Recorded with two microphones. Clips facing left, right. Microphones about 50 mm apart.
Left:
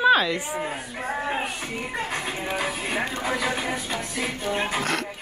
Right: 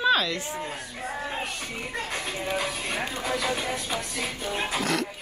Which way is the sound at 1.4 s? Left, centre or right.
Centre.